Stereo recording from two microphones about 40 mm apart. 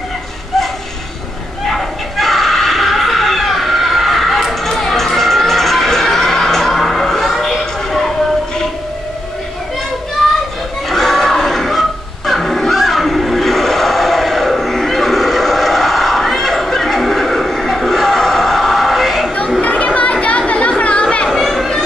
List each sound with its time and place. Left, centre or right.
1.7 s a sound: centre
4.6 s crowd: centre
10.2 s children playing: centre
10.9 s music: centre
12.3 s a sound: centre
19.6 s chatter: left